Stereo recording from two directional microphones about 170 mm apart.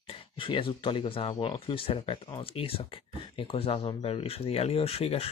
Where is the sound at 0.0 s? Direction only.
30° left (ahead or behind).